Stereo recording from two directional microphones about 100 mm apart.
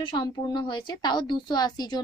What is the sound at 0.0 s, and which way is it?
A woman's voice, 50° left (ahead or behind).